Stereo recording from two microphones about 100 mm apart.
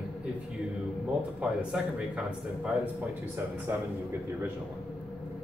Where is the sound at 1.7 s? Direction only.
10° right (ahead or behind).